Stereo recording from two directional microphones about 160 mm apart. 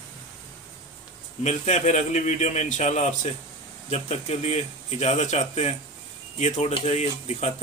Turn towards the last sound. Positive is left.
turn(degrees=45)  # may be behind; listen again after turning